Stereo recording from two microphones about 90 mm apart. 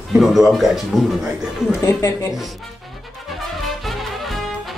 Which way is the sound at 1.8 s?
35° left (ahead or behind).